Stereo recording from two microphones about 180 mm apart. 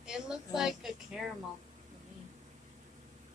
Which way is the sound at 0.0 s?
5° right (ahead or behind).